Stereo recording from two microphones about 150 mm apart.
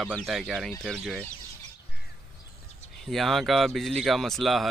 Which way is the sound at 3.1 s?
Centre (ahead or behind).